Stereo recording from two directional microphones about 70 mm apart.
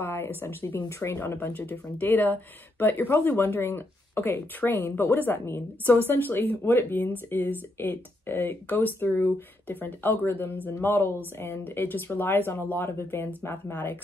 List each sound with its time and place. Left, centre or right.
0.0 s speech: left